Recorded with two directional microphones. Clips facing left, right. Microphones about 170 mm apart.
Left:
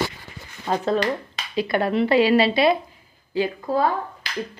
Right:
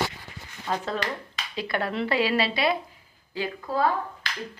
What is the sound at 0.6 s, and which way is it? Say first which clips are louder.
A woman's voice: left 7 dB; 30° left (ahead or behind).